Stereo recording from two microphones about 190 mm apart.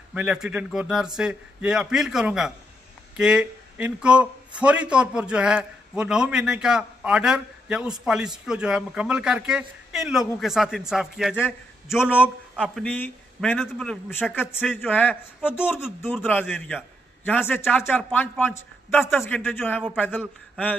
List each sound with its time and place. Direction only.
0.1 s a man's voice: 5° right (ahead or behind)